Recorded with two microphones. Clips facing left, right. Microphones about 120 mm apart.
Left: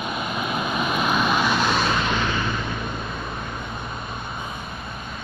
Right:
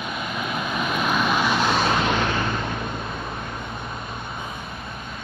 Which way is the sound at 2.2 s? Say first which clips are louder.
Right 1 dB; 5° left (ahead or behind).